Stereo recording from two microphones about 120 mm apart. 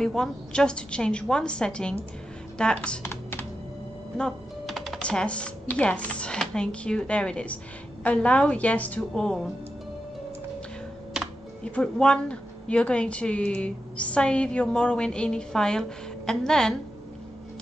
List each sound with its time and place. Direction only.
0.0 s a woman's voice: 5° left (ahead or behind)
3.1 s computer keyboard: 15° left (ahead or behind)
4.2 s a woman's voice: centre (ahead or behind)
11.6 s a woman's voice: 10° left (ahead or behind)